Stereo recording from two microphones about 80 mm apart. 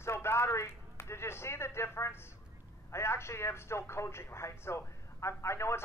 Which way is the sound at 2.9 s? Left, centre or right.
Left.